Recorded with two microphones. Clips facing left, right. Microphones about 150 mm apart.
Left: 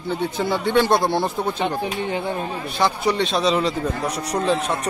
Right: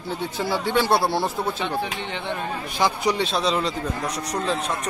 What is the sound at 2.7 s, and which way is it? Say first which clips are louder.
Speech: left 2 dB; 15° right (ahead or behind).